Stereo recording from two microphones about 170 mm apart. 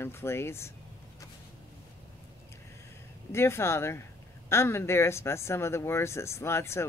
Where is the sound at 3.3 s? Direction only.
15° left (ahead or behind).